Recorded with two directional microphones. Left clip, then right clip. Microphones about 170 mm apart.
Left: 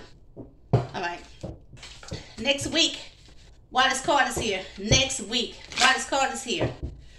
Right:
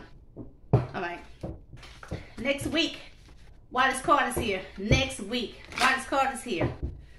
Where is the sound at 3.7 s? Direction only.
20° right (ahead or behind).